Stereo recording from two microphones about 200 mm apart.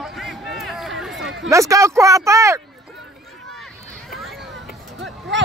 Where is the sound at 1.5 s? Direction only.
15° right (ahead or behind).